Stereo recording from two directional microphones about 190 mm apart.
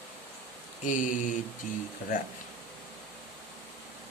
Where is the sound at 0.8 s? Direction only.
45° left (ahead or behind).